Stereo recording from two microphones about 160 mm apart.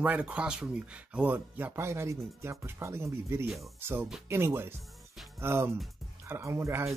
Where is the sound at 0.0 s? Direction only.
10° right (ahead or behind).